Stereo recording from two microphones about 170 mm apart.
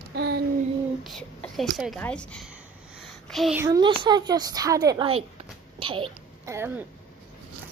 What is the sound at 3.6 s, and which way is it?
A woman's voice, 25° right (ahead or behind).